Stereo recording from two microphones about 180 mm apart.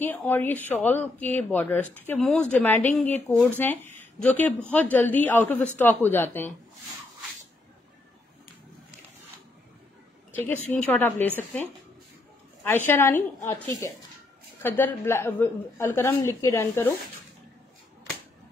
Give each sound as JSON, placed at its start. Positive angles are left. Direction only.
{"t": 0.0, "sound": "a man's voice", "side_deg": 10}
{"t": 10.3, "sound": "a man's voice", "side_deg": 10}
{"t": 12.6, "sound": "a man's voice", "side_deg": 10}